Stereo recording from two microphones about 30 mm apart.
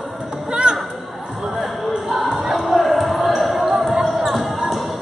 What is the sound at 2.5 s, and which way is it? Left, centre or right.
Basketball bounce, centre.